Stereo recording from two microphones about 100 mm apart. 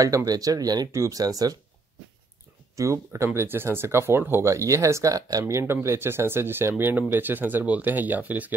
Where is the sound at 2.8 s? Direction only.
30° right (ahead or behind).